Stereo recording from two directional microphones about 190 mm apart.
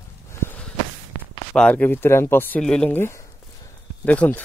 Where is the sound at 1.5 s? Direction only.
5° left (ahead or behind).